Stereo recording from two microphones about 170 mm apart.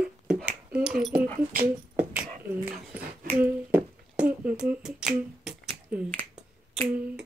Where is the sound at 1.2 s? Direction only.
50° right (ahead or behind).